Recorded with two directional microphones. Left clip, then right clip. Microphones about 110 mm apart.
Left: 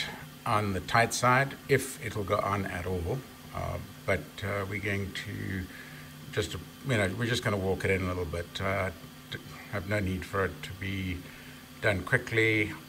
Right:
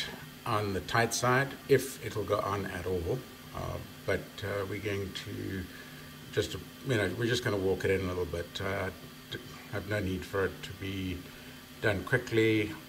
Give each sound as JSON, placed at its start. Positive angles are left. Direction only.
{"t": 0.0, "sound": "speech", "side_deg": -20}
{"t": 6.3, "sound": "speech", "side_deg": -30}